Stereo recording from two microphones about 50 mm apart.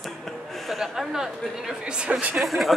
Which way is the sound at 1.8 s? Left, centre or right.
Right.